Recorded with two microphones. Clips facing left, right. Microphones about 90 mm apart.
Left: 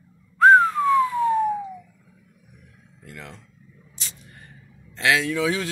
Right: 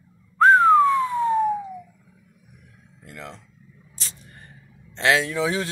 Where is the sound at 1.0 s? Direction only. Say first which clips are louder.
Left 1 dB; 30° right (ahead or behind).